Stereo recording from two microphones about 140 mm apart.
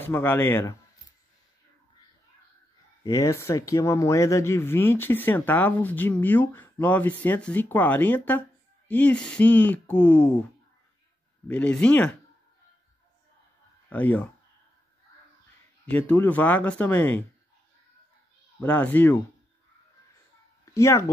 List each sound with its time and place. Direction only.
0.0 s speech: 15° left (ahead or behind)
3.0 s speech: 25° left (ahead or behind)
11.4 s speech: 10° left (ahead or behind)
13.8 s speech: 10° left (ahead or behind)
15.8 s speech: 10° left (ahead or behind)
18.6 s speech: 10° left (ahead or behind)
20.6 s a sound: 20° left (ahead or behind)